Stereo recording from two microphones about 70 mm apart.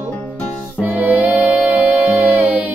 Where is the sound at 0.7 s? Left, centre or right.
Right.